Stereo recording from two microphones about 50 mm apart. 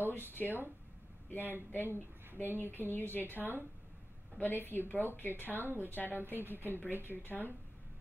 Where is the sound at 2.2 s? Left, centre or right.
Right.